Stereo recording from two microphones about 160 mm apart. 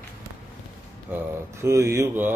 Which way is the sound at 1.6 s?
15° right (ahead or behind).